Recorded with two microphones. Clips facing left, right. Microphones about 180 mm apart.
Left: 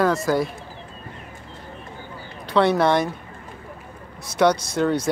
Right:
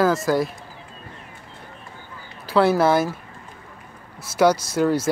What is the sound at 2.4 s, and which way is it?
Speech, 5° right (ahead or behind).